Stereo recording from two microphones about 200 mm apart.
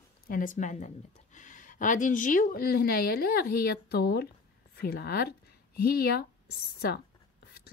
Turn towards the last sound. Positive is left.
turn(degrees=50)  # may be behind; listen again after turning